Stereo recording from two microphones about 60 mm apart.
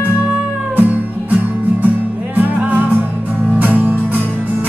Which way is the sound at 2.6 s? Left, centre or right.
Right.